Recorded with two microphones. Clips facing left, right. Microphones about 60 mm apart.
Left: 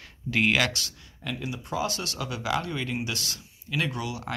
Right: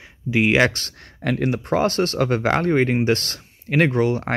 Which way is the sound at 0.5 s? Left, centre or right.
Right.